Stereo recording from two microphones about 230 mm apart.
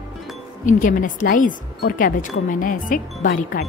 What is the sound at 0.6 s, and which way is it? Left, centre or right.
Speech, left.